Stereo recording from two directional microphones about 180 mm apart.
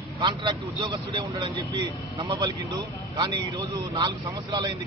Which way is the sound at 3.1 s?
25° right (ahead or behind).